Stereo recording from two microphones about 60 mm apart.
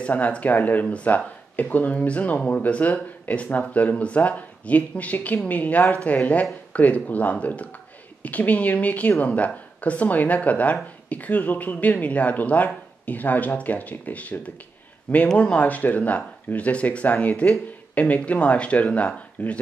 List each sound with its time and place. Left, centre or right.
0.0 s speech: left